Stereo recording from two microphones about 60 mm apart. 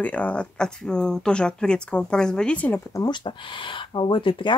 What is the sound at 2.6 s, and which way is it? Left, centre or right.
Speech, left.